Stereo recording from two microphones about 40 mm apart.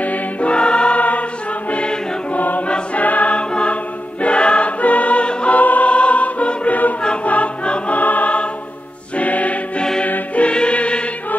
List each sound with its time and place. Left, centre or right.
0.0 s music: left
0.5 s music: left
2.3 s choir: left
2.6 s choir: left
5.6 s music: left
7.2 s choir: left
8.0 s music: left
10.5 s music: left